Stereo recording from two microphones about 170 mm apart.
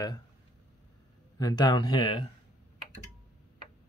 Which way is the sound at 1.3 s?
25° left (ahead or behind).